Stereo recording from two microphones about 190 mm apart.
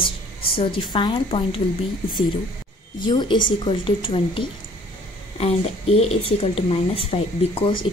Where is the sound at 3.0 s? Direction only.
25° left (ahead or behind).